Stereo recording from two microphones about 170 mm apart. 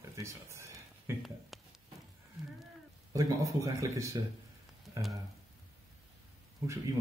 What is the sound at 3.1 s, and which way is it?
Speech, 20° right (ahead or behind).